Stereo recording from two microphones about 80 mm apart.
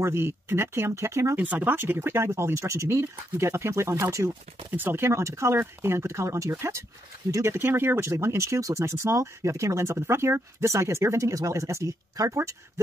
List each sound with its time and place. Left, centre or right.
0.0 s speech: right
1.3 s speech: right